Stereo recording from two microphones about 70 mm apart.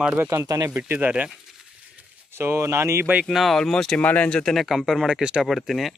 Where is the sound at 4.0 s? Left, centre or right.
Left.